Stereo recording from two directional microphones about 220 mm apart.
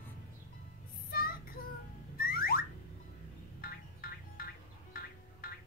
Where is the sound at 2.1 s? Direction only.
40° left (ahead or behind).